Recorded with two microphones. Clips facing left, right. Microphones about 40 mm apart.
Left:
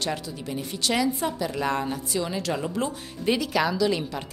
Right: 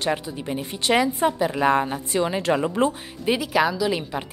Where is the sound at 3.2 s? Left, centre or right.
Centre.